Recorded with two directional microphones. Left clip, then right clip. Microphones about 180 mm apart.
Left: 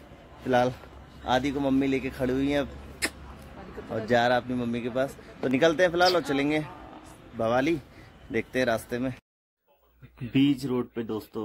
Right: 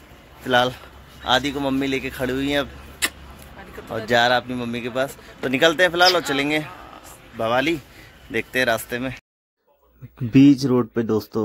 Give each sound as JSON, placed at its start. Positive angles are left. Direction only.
{"t": 0.5, "sound": "a man's voice", "side_deg": -5}
{"t": 3.9, "sound": "a man's voice", "side_deg": -10}
{"t": 10.3, "sound": "speech", "side_deg": -35}